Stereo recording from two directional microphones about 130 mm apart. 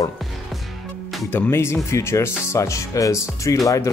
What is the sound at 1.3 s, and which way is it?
Speech, 20° left (ahead or behind).